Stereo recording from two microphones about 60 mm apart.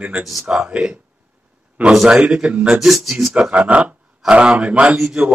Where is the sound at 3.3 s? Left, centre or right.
Centre.